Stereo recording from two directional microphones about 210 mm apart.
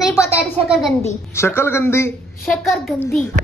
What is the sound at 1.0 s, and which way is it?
Speech, 10° left (ahead or behind).